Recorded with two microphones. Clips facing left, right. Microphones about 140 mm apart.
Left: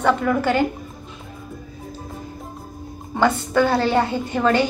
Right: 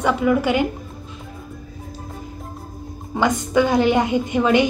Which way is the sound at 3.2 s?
15° right (ahead or behind).